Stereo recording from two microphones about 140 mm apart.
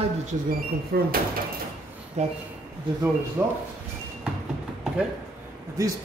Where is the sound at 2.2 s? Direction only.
55° right (ahead or behind).